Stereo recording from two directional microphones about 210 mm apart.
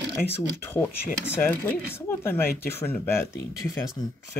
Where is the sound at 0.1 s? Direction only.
10° left (ahead or behind).